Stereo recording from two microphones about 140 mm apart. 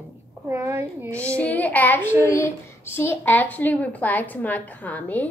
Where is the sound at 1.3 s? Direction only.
10° left (ahead or behind).